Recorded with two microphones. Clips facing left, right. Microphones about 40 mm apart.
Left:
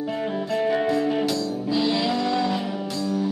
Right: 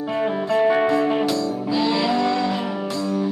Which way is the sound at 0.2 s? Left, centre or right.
Right.